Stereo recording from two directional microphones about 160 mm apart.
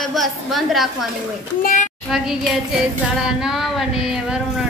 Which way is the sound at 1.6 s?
50° left (ahead or behind).